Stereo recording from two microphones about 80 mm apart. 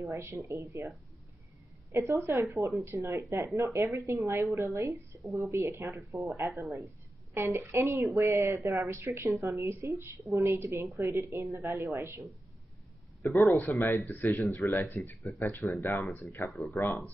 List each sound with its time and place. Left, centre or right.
0.0 s a woman's voice: right
6.1 s a woman's voice: right
7.3 s a woman's voice: right
13.2 s a man's voice: left
13.5 s speech: left
15.6 s speech: left
15.9 s speech: left
16.4 s speech: centre
16.7 s speech: left